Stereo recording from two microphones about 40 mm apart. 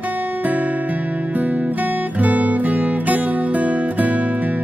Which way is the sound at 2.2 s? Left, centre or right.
Right.